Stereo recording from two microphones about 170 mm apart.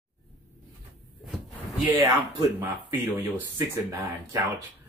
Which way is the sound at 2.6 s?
15° right (ahead or behind).